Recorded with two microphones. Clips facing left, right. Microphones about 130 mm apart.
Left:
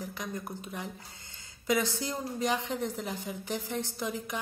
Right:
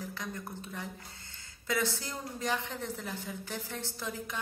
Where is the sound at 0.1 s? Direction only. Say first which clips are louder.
Left 3 dB; 15° left (ahead or behind).